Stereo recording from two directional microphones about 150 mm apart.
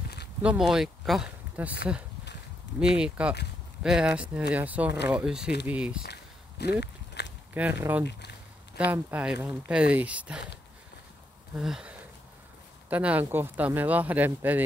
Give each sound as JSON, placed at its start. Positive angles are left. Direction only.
{"t": 0.4, "sound": "speech", "side_deg": -5}
{"t": 2.8, "sound": "speech", "side_deg": -5}
{"t": 6.6, "sound": "speech", "side_deg": 90}
{"t": 7.2, "sound": "walk", "side_deg": 90}
{"t": 7.5, "sound": "speech", "side_deg": -10}
{"t": 11.5, "sound": "speech", "side_deg": -5}
{"t": 12.9, "sound": "speech", "side_deg": -10}